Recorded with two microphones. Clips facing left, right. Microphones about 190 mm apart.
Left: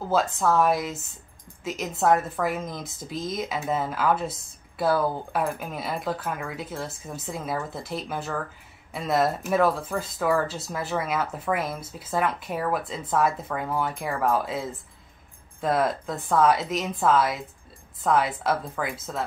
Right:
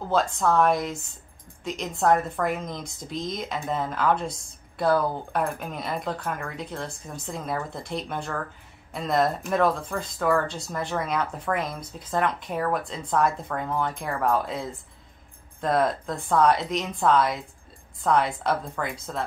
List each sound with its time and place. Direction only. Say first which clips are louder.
0.1 s speech: even; 5° left (ahead or behind)